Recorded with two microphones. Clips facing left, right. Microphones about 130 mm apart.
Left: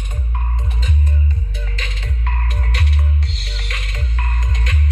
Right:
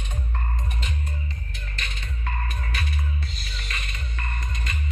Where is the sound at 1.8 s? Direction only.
90° left.